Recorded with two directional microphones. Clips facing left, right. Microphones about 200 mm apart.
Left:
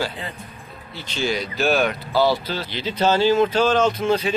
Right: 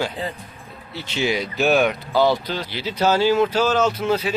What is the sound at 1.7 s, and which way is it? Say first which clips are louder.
Speech: right 2 dB; centre (ahead or behind).